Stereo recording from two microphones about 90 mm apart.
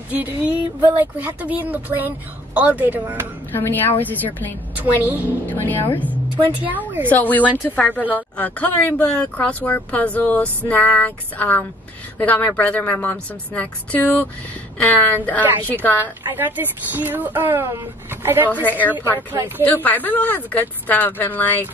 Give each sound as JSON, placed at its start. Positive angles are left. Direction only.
{"t": 0.1, "sound": "speech", "side_deg": -20}
{"t": 3.5, "sound": "speech", "side_deg": 25}
{"t": 4.7, "sound": "speech", "side_deg": -20}
{"t": 5.5, "sound": "speech", "side_deg": 20}
{"t": 7.1, "sound": "speech", "side_deg": 20}
{"t": 16.3, "sound": "speech", "side_deg": -20}
{"t": 18.5, "sound": "speech", "side_deg": 20}